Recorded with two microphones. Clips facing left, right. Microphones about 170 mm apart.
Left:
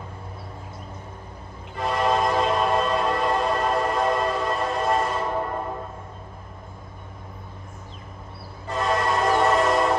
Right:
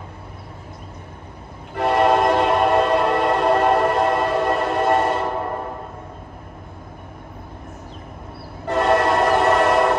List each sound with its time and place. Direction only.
1.8 s train: 65° right (ahead or behind)
8.6 s train: 65° right (ahead or behind)